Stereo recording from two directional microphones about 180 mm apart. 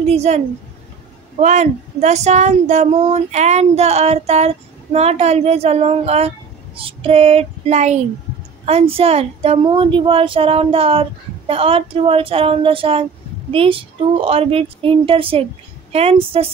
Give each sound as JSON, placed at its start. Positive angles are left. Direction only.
{"t": 0.0, "sound": "speech", "side_deg": -35}
{"t": 1.4, "sound": "speech", "side_deg": -40}